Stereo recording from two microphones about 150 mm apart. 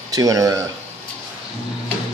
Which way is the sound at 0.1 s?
25° right (ahead or behind).